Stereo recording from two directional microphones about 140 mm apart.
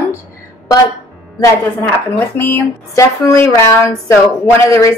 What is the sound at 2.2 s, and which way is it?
A woman's voice, 15° left (ahead or behind).